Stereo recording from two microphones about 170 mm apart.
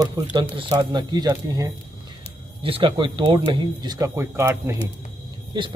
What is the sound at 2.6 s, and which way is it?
Speech, 30° right (ahead or behind).